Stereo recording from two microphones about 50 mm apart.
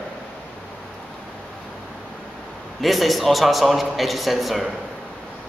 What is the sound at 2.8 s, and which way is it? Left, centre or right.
A man's voice, centre.